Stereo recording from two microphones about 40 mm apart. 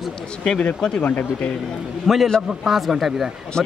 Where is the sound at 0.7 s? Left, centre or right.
Centre.